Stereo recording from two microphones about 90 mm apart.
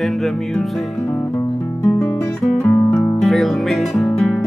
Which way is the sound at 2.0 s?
10° left (ahead or behind).